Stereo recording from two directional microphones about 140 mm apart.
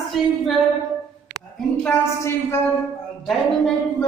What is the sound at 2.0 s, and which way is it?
Speech, 15° left (ahead or behind).